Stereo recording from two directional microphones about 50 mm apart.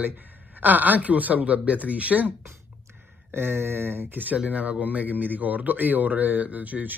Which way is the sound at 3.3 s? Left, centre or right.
Right.